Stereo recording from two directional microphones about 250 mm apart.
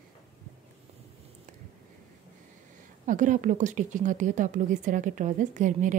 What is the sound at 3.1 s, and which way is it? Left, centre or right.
Speech, right.